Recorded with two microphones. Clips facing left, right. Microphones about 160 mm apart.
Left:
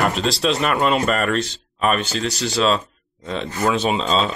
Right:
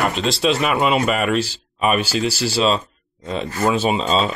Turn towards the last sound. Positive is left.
turn(degrees=-5)  # may be behind; listen again after turning